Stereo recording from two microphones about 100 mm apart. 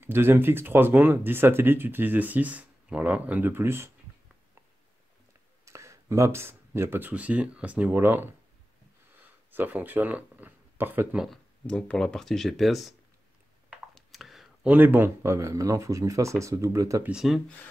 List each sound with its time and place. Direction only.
0.0 s speech: 25° right (ahead or behind)
5.7 s speech: 30° right (ahead or behind)
11.2 s speech: 10° left (ahead or behind)
13.9 s a sound: centre (ahead or behind)
14.7 s speech: 20° right (ahead or behind)
17.1 s speech: 5° right (ahead or behind)